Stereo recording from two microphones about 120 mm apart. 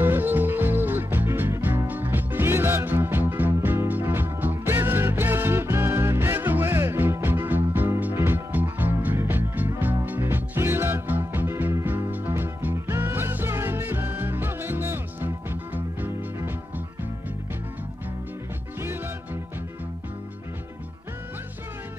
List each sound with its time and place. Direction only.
0.0 s music: 15° right (ahead or behind)